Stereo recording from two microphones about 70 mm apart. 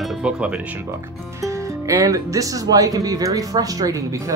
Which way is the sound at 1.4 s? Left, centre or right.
Right.